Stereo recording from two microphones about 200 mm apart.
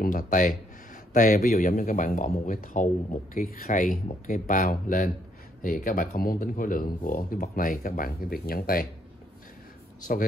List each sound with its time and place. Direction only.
0.0 s speech: 40° left (ahead or behind)
10.1 s speech: 45° left (ahead or behind)